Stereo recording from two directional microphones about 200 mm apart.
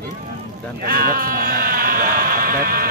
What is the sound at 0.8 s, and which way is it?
Speech, 45° right (ahead or behind).